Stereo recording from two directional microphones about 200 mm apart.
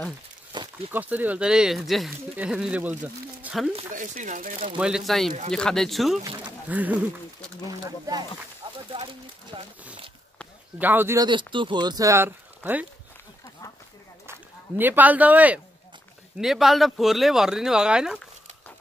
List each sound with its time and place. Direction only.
0.5 s a sound: 20° right (ahead or behind)
0.9 s speech: 10° right (ahead or behind)
3.9 s speech: 40° right (ahead or behind)
4.7 s speech: 5° right (ahead or behind)
6.2 s speech: 20° right (ahead or behind)
6.7 s speech: 5° right (ahead or behind)
7.8 s speech: 20° right (ahead or behind)
10.8 s speech: 10° right (ahead or behind)
11.2 s speech: 25° right (ahead or behind)
14.8 s speech: 10° right (ahead or behind)